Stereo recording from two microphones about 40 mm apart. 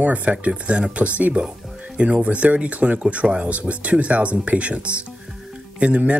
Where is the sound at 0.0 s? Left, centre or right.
Right.